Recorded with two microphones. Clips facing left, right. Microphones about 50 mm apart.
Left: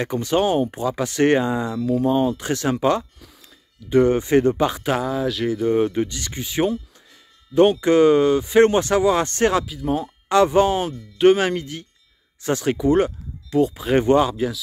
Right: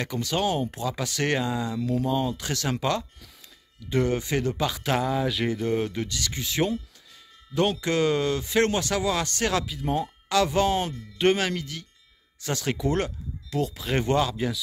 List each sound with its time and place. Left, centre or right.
0.0 s speech: left
4.8 s speech: centre
5.6 s speech: centre
7.8 s speech: left
9.7 s speech: centre
10.2 s speech: left
10.8 s speech: centre
11.3 s speech: left
14.3 s speech: centre